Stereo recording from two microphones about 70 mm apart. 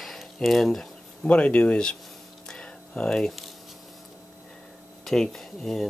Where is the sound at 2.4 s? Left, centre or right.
Centre.